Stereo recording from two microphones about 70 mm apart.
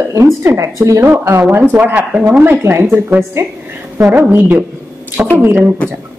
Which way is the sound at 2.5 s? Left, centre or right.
Right.